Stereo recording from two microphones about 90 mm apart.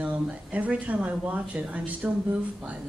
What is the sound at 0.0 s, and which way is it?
Speech, 15° right (ahead or behind).